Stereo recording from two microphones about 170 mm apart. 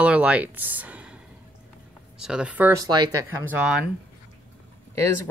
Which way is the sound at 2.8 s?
25° right (ahead or behind).